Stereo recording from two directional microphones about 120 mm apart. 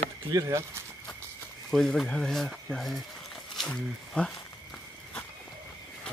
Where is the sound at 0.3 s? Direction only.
25° right (ahead or behind).